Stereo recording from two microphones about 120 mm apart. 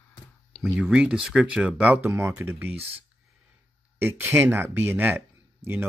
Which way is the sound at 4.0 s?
20° right (ahead or behind).